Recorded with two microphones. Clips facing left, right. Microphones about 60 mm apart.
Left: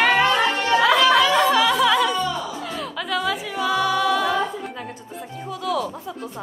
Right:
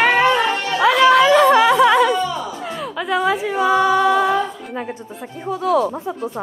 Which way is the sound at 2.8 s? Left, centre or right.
Centre.